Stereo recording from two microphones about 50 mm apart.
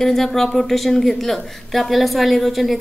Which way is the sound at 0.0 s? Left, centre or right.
Centre.